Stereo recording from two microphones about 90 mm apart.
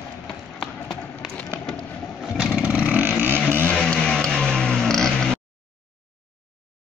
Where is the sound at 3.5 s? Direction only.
15° left (ahead or behind).